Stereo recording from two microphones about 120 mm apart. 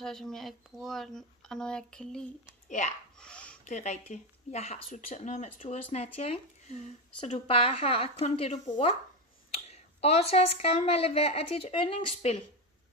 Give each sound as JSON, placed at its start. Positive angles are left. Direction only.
{"t": 0.0, "sound": "speech", "side_deg": 5}
{"t": 3.2, "sound": "a sound", "side_deg": 10}
{"t": 3.6, "sound": "speech", "side_deg": 75}
{"t": 5.6, "sound": "speech", "side_deg": 55}
{"t": 8.6, "sound": "speech", "side_deg": 45}
{"t": 9.5, "sound": "speech", "side_deg": 60}
{"t": 12.2, "sound": "speech", "side_deg": 65}